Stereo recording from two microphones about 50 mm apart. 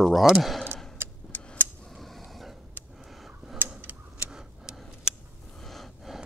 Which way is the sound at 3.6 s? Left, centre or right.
Right.